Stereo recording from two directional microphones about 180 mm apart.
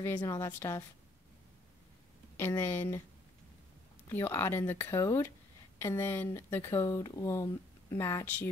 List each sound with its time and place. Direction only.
0.0 s speech: 10° left (ahead or behind)
2.3 s speech: 15° left (ahead or behind)
4.1 s speech: 10° left (ahead or behind)